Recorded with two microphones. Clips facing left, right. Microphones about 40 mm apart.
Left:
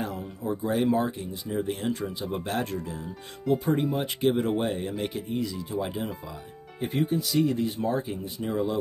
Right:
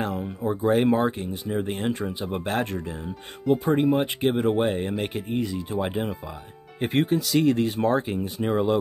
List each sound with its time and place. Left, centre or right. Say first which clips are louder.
0.1 s a sound: right 4 dB; right
0.7 s speech: right 4 dB; right
4.6 s speech: right 4 dB; right
6.8 s speech: right 4 dB; right